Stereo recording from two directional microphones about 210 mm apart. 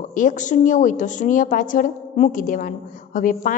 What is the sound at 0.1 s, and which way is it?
A woman's voice, 40° left (ahead or behind).